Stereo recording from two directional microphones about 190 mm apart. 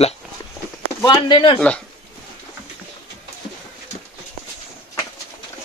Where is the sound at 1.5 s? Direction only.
5° left (ahead or behind).